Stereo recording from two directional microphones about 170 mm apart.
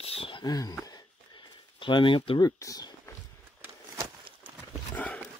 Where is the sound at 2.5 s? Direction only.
20° left (ahead or behind).